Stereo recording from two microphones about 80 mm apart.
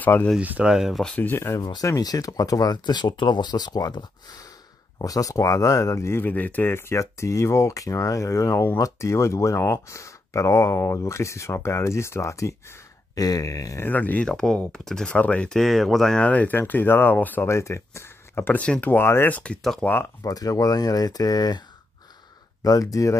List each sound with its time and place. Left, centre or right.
0.0 s speech: left
0.4 s speech: centre
1.1 s speech: left
1.8 s speech: left
13.8 s speech: left
14.3 s speech: centre
15.5 s speech: centre
16.3 s speech: centre
17.5 s speech: left
19.3 s speech: centre
19.8 s speech: left
20.2 s speech: left